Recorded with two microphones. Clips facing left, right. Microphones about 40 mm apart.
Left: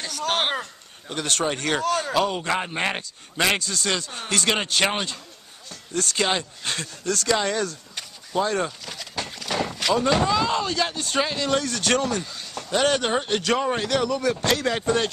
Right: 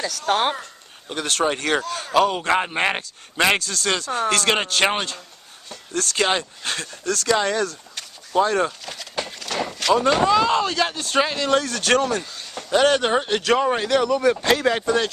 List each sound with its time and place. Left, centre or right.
1.0 s speech: centre
3.5 s speech: centre
4.8 s speech: centre
5.9 s speech: centre
9.3 s horse: centre
10.0 s speech: centre